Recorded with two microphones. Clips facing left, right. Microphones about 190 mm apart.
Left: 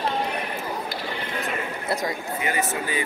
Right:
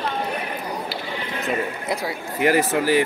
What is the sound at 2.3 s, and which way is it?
Speech, 90° right.